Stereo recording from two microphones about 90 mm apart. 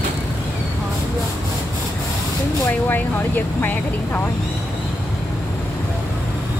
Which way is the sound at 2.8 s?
20° left (ahead or behind).